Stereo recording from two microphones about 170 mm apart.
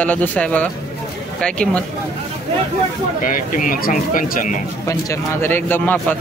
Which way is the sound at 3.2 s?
55° left (ahead or behind).